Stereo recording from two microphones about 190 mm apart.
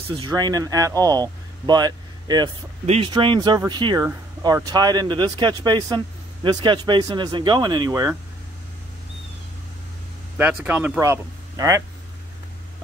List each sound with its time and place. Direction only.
0.1 s speech: 25° right (ahead or behind)
10.3 s speech: 10° right (ahead or behind)